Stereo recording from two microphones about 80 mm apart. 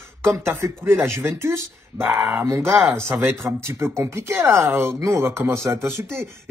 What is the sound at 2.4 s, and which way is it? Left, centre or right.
Speech, right.